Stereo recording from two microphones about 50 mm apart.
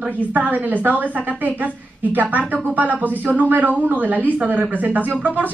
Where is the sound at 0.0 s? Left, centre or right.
Right.